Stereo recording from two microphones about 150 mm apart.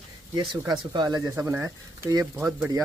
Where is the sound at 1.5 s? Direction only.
15° right (ahead or behind).